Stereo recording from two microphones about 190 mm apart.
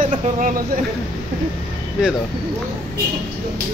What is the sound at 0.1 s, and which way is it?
Speech, 40° right (ahead or behind).